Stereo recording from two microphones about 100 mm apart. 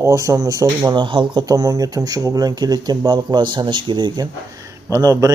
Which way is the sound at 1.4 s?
40° right (ahead or behind).